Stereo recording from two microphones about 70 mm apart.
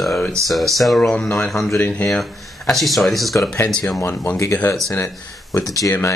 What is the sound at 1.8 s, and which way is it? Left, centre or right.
Mantra, left.